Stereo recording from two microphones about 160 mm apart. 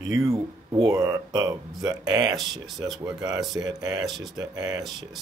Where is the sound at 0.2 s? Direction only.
20° right (ahead or behind).